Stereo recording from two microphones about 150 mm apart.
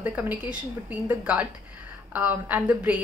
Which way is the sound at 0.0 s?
10° right (ahead or behind).